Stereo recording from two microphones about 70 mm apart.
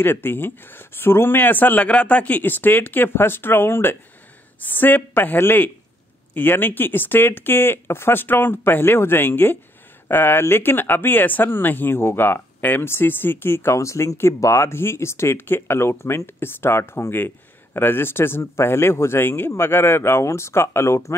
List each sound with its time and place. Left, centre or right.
0.0 s speech: left
13.7 s speech: left